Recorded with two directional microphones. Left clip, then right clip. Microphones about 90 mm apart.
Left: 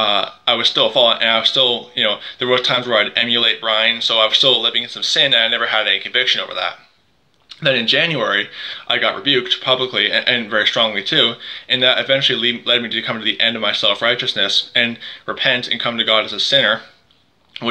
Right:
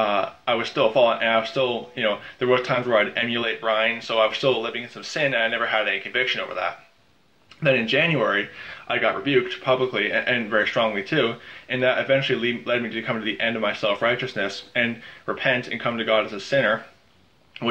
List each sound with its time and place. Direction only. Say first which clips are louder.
0.0 s speech: left 6 dB; 40° left (ahead or behind)
1.1 s speech: left 5 dB; 35° left (ahead or behind)
1.4 s speech: left 9 dB; 50° left (ahead or behind); by 4.0 s 35° left (ahead or behind)
4.0 s speech: left 7 dB; 45° left (ahead or behind)
5.3 s speech: left 7 dB; 35° left (ahead or behind)
7.8 s speech: left 5 dB; 35° left (ahead or behind)
14.7 s speech: left 7 dB; 35° left (ahead or behind)